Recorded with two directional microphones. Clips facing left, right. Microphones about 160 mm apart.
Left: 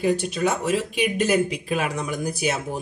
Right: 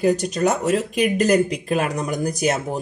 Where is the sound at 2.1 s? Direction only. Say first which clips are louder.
Right 6 dB; 40° right (ahead or behind).